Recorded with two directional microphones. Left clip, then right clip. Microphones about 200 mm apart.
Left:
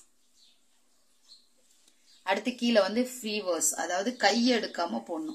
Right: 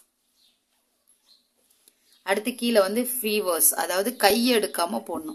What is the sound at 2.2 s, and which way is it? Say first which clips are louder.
A woman's voice: right 3 dB; 20° right (ahead or behind).